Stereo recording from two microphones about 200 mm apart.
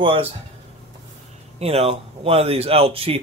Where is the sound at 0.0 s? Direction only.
25° right (ahead or behind).